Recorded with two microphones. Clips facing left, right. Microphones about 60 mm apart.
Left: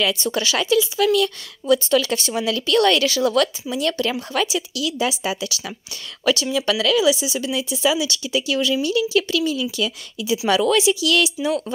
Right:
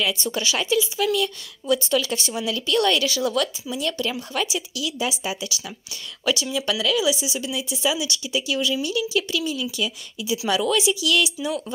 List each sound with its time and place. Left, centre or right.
0.0 s speech: left
10.5 s speech: left